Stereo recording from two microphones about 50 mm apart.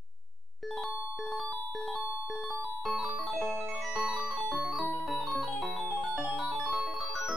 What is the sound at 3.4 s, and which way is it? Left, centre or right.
Music, right.